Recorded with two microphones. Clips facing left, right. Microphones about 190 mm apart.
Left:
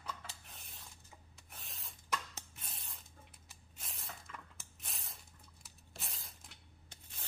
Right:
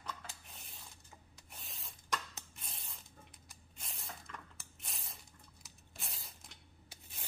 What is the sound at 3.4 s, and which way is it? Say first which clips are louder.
Squish: left 1 dB; centre (ahead or behind).